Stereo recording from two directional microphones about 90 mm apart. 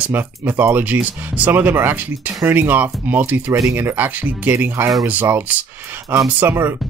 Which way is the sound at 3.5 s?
30° right (ahead or behind).